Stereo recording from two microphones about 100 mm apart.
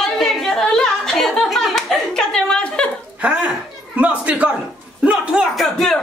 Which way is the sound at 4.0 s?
15° right (ahead or behind).